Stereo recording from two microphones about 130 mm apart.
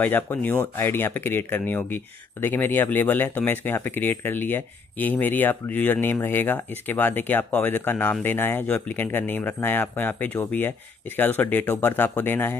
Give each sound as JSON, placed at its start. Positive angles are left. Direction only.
{"t": 0.0, "sound": "speech", "side_deg": 15}